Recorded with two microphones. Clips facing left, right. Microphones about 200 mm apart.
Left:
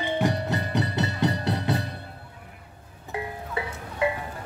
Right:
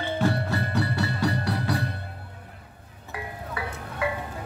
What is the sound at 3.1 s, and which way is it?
Music, 25° left (ahead or behind).